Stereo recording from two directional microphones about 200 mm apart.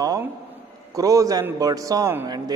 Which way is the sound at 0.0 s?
20° right (ahead or behind).